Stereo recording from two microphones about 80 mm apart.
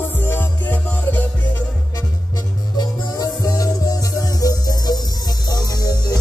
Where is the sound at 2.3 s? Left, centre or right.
Left.